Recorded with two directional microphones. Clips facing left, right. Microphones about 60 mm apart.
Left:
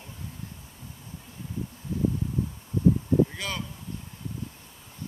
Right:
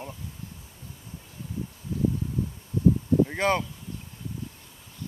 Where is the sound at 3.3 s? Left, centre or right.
Right.